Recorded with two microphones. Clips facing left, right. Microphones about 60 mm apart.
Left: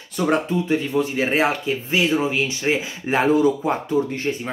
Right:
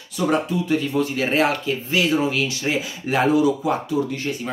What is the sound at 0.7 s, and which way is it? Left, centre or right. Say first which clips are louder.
Speech: even; left.